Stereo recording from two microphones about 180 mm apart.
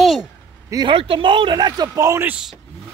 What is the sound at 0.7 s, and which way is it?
Speech, 25° right (ahead or behind).